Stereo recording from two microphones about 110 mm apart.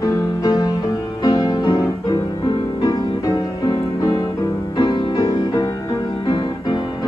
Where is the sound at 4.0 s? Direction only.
35° left (ahead or behind).